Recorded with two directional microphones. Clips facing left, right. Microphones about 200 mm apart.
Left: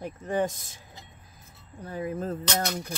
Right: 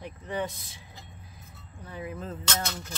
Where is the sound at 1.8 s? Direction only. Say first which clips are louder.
Left 6 dB; 45° left (ahead or behind).